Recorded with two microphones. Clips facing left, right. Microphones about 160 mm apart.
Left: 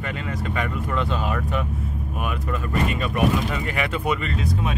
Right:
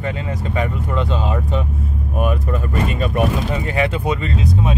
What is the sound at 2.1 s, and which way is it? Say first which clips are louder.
Speech: right 8 dB; 35° right (ahead or behind).